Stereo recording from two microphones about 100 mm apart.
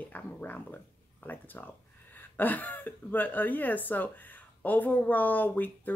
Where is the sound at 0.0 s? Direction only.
15° left (ahead or behind).